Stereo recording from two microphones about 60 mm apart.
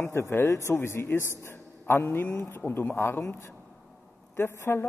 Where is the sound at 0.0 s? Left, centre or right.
Left.